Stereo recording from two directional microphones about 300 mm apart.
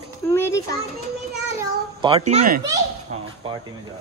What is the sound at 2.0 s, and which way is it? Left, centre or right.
Speech, centre.